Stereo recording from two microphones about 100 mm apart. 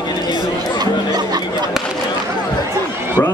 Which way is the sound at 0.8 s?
45° right (ahead or behind).